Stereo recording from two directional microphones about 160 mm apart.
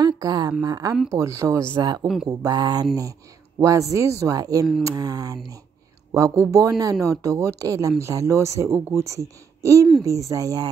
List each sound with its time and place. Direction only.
0.0 s a woman's voice: 25° right (ahead or behind)